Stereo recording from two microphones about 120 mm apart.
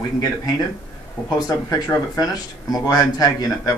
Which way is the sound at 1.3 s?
30° left (ahead or behind).